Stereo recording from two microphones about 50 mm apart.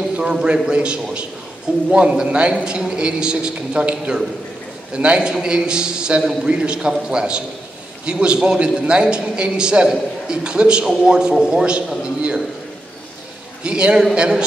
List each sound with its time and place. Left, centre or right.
0.2 s a man's voice: centre
13.7 s a man's voice: centre